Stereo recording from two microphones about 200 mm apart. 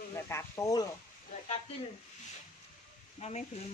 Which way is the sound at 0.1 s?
15° left (ahead or behind).